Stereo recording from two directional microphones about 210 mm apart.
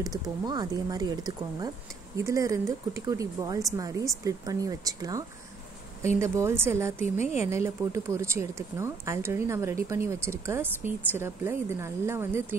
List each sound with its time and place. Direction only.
0.0 s speech: 20° right (ahead or behind)